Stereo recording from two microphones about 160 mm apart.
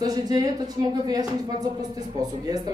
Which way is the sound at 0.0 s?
25° right (ahead or behind).